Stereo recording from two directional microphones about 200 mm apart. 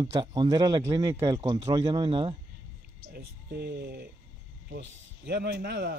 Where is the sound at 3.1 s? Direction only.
55° right (ahead or behind).